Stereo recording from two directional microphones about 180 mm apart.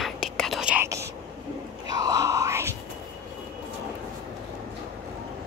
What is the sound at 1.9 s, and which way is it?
Groan, 20° right (ahead or behind).